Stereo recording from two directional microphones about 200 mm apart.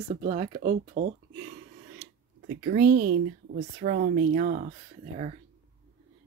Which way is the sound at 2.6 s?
40° right (ahead or behind).